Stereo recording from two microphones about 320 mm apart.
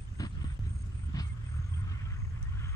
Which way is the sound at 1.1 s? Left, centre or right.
Centre.